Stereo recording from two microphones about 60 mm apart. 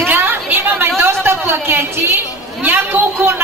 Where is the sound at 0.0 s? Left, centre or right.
Right.